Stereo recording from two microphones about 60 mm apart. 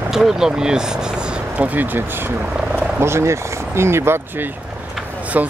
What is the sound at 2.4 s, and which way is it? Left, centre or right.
Speech, centre.